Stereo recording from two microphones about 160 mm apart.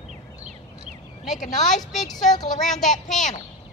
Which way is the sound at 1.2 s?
Centre (ahead or behind).